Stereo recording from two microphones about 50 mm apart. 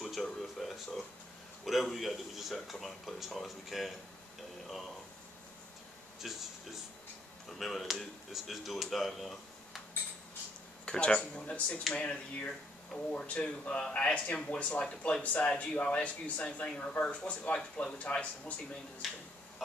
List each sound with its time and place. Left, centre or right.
0.0 s a sound: centre
1.6 s speech: centre
6.2 s speech: centre
7.4 s speech: centre
10.9 s speech: centre
12.9 s speech: centre
13.3 s speech: left
19.0 s speech: centre